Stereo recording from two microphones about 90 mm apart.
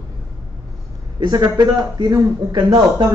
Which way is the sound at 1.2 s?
45° right (ahead or behind).